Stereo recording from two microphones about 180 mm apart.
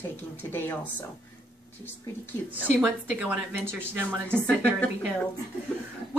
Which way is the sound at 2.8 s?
10° right (ahead or behind).